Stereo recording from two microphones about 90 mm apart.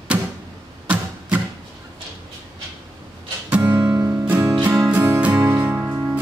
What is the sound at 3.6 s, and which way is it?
Music, 25° right (ahead or behind).